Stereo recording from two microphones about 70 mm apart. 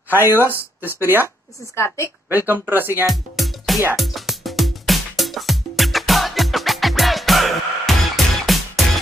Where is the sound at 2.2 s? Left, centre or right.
Right.